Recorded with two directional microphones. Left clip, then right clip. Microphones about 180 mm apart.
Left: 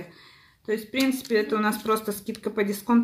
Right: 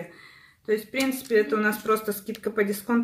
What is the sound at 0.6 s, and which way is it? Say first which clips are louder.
Speech: even; 35° left (ahead or behind).